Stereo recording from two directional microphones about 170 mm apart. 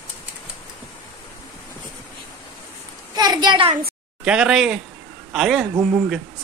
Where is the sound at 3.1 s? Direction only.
25° right (ahead or behind).